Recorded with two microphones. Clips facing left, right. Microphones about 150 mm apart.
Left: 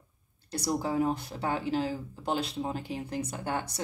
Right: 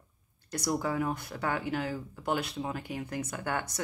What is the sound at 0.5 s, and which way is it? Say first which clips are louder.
Speech: left 1 dB; 30° left (ahead or behind).